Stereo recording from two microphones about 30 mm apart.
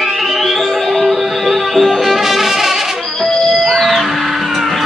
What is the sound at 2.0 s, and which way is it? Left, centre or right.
Music, centre.